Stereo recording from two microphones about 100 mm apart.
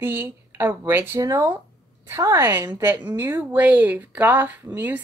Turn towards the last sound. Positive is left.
turn(degrees=-20)  # may be behind; listen again after turning